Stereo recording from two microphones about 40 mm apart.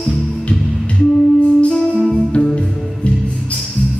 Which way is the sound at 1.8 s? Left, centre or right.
Centre.